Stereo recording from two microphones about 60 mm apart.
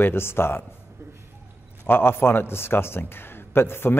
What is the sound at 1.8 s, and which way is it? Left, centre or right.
A man's voice, left.